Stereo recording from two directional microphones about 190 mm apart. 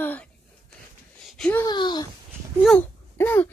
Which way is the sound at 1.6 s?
25° left (ahead or behind).